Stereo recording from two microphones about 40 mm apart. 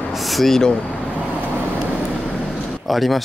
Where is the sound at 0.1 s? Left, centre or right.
Centre.